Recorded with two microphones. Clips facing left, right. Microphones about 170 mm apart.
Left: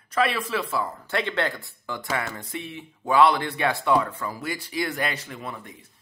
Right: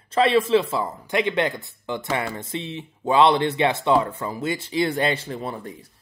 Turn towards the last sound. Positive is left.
turn(degrees=-30)  # may be behind; listen again after turning